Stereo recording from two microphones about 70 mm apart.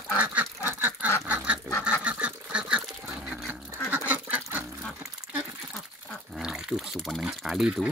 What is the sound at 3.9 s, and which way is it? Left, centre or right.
Duck, right.